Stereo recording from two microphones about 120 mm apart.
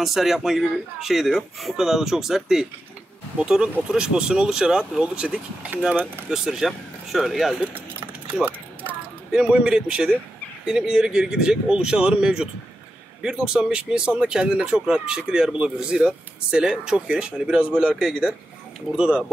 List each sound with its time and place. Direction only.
0.0 s speech: centre (ahead or behind)
8.3 s a sound: 15° right (ahead or behind)
9.3 s speech: 5° right (ahead or behind)